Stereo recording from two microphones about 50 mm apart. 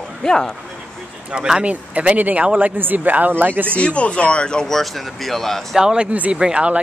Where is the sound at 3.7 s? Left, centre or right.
Left.